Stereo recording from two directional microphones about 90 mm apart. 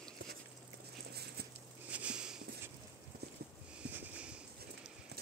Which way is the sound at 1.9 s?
15° right (ahead or behind).